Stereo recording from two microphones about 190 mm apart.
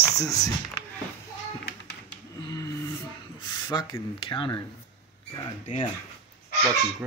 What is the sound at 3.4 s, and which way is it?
Speech, 20° left (ahead or behind).